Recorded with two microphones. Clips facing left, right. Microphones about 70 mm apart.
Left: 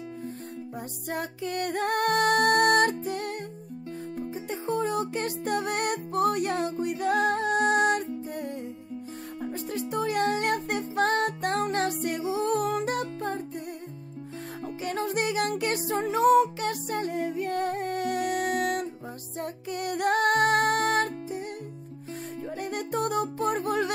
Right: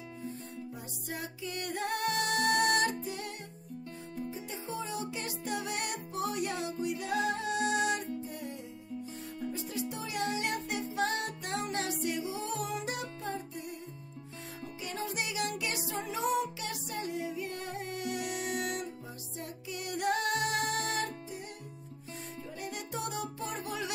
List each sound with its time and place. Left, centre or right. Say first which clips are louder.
1.1 s music: left 8 dB; left
14.8 s music: left 8 dB; left
22.6 s music: left 9 dB; left